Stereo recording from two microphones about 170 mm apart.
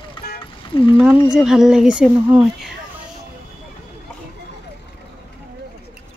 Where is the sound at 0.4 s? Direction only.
30° left (ahead or behind).